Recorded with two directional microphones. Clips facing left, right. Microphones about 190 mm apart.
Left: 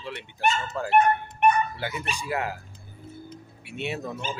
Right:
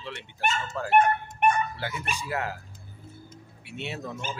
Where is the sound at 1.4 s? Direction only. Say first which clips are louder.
Left 2 dB; 50° right (ahead or behind).